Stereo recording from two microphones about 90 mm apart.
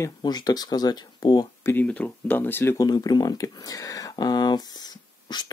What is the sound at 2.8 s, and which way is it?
Speech, 50° left (ahead or behind).